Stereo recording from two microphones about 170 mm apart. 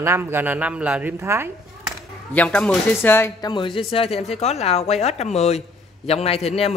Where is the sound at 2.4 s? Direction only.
5° left (ahead or behind).